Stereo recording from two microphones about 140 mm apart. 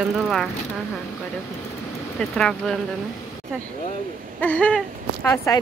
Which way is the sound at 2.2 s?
5° left (ahead or behind).